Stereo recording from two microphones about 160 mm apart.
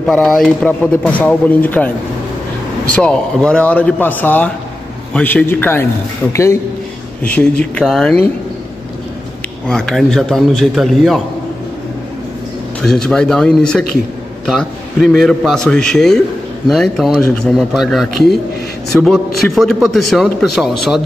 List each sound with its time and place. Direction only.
0.0 s speech: centre (ahead or behind)
2.9 s a man's voice: 5° left (ahead or behind)
9.7 s a man's voice: 5° left (ahead or behind)
12.8 s a man's voice: 5° left (ahead or behind)